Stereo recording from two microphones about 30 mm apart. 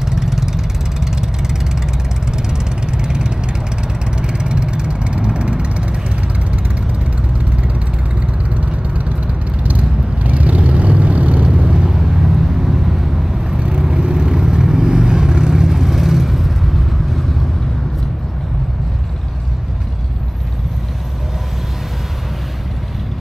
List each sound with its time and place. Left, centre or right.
0.0 s ratchet: centre
2.3 s vehicle: right
8.5 s vehicle: right
11.7 s vehicle: centre
13.7 s vehicle: right; by 16.8 s centre